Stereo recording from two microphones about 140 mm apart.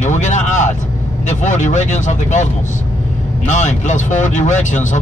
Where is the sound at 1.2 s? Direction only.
60° left (ahead or behind).